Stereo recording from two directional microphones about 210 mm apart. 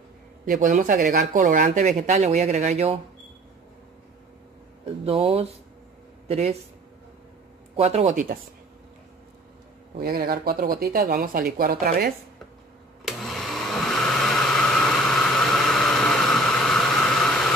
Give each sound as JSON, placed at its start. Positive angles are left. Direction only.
{"t": 0.5, "sound": "speech", "side_deg": -40}
{"t": 5.0, "sound": "speech", "side_deg": -25}
{"t": 7.7, "sound": "speech", "side_deg": -30}
{"t": 9.9, "sound": "speech", "side_deg": -45}
{"t": 13.0, "sound": "vacuum cleaner", "side_deg": 0}